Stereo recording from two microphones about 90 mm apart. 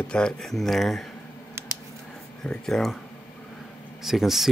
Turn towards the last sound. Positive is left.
turn(degrees=-5)  # may be behind; listen again after turning